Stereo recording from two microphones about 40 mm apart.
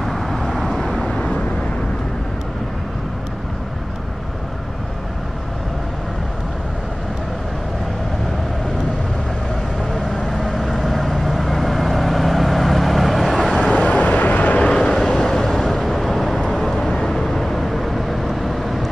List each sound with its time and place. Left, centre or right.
0.0 s vehicle: centre
1.0 s vehicle: centre
9.9 s vehicle: centre
10.4 s vehicle: centre
13.8 s vehicle: left
14.6 s vehicle: left; by 18.9 s centre